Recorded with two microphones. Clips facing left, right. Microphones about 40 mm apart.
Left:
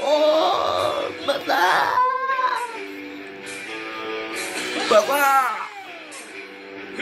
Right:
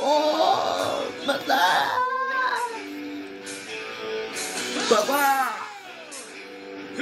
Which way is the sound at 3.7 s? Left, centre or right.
Left.